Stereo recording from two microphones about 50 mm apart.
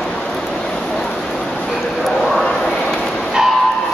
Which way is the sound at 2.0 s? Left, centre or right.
Centre.